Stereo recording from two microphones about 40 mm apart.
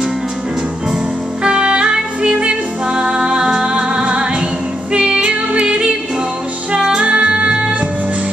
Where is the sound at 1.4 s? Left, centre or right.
Right.